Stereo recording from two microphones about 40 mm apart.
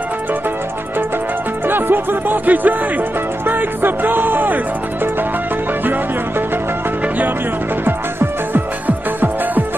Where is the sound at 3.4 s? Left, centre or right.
Right.